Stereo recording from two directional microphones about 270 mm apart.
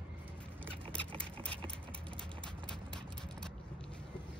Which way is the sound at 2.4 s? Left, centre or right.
Centre.